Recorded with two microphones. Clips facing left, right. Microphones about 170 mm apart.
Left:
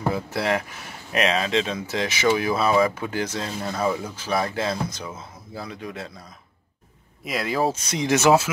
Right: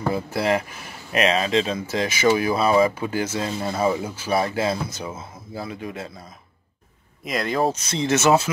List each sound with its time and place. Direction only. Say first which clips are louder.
0.0 s speech: right 2 dB; centre (ahead or behind)
7.2 s speech: right 1 dB; 5° left (ahead or behind)